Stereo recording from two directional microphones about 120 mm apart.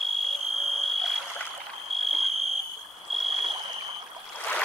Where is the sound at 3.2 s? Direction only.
50° right (ahead or behind).